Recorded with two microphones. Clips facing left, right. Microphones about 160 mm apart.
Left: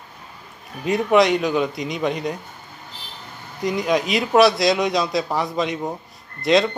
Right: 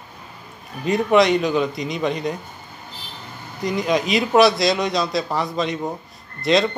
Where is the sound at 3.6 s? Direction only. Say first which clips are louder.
Even; 5° left (ahead or behind).